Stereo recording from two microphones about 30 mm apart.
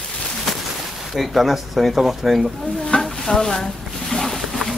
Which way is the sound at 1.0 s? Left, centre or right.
Centre.